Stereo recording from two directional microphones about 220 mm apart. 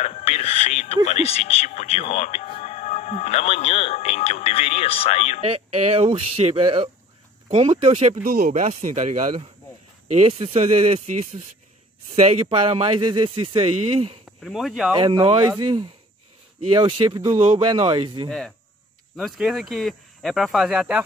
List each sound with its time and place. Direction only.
0.0 s speech: 30° left (ahead or behind)
5.5 s speech: 25° right (ahead or behind)
8.2 s speech: 40° right (ahead or behind)
12.2 s speech: 30° right (ahead or behind)
14.4 s speech: centre (ahead or behind)
15.0 s speech: 20° right (ahead or behind)
16.7 s speech: 20° right (ahead or behind)
19.1 s speech: centre (ahead or behind)